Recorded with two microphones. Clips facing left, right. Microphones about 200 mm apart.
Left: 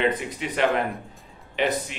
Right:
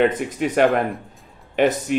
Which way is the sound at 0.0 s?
50° right (ahead or behind).